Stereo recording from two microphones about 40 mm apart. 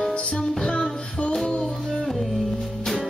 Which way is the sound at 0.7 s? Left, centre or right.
Left.